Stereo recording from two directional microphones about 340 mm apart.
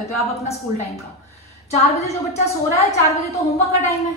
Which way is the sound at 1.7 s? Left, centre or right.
Centre.